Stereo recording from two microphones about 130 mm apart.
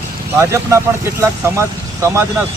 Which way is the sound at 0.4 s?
25° right (ahead or behind).